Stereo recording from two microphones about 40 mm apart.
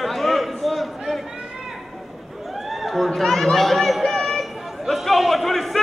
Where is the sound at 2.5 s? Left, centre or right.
Centre.